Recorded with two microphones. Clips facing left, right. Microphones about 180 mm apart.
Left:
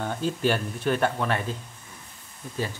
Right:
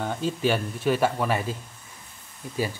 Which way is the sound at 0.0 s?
5° right (ahead or behind).